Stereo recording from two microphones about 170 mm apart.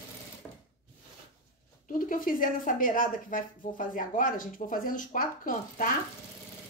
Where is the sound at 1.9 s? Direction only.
55° left (ahead or behind).